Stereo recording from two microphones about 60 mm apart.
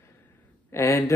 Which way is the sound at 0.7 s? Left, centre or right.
Left.